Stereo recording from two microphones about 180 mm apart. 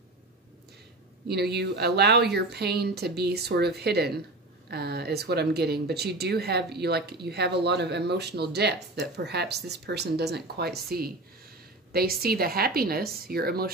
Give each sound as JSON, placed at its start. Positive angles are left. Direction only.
{"t": 1.2, "sound": "speech", "side_deg": -65}